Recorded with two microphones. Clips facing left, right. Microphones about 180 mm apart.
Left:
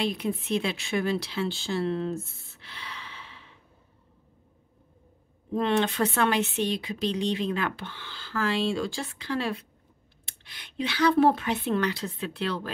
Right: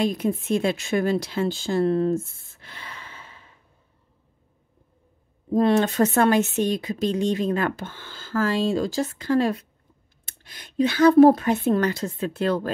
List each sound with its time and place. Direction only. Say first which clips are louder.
0.0 s speech: right 5 dB; 45° right (ahead or behind)
5.5 s speech: right 6 dB; 40° right (ahead or behind)